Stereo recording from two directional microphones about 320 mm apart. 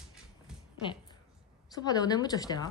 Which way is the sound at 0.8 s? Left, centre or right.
Centre.